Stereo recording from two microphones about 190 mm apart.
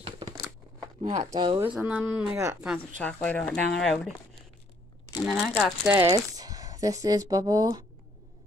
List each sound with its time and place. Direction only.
1.3 s speech: 25° right (ahead or behind)
1.6 s speech: 10° right (ahead or behind)
3.0 s speech: 5° left (ahead or behind)
5.2 s speech: centre (ahead or behind); by 7.8 s 20° right (ahead or behind)